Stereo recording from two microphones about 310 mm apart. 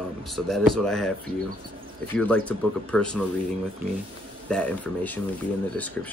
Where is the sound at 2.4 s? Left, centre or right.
Centre.